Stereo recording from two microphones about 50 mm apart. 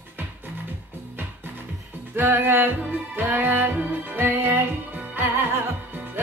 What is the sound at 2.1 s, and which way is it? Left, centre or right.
Music, right.